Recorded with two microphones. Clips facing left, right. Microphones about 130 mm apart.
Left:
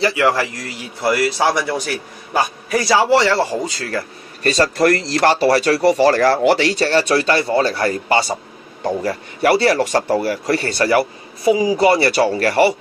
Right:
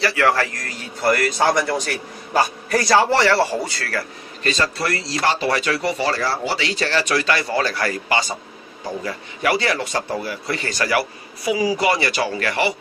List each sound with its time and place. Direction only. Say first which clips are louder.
0.0 s a man's voice: left 2 dB; 15° left (ahead or behind)
3.1 s a man's voice: left 2 dB; 15° left (ahead or behind)
4.4 s speech: left 7 dB; 40° left (ahead or behind)
5.4 s a man's voice: left 7 dB; 35° left (ahead or behind)
6.1 s speech: left 9 dB; 55° left (ahead or behind)
6.6 s a man's voice: left 6 dB; 35° left (ahead or behind)
11.0 s a man's voice: left 5 dB; 25° left (ahead or behind)